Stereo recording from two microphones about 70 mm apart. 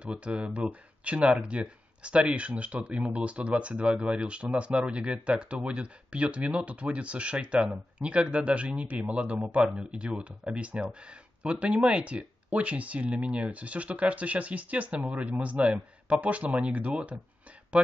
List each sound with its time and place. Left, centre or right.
0.0 s speech: centre